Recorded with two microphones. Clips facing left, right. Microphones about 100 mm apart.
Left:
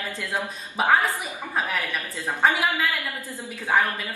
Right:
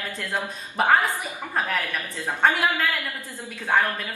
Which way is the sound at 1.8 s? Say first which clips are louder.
Even; 20° left (ahead or behind).